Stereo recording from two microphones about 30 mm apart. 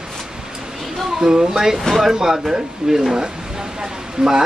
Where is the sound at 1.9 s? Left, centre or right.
Centre.